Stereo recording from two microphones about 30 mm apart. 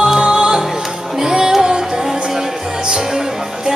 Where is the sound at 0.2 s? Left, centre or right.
Right.